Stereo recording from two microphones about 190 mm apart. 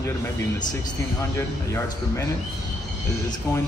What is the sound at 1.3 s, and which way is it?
Speech, 15° left (ahead or behind).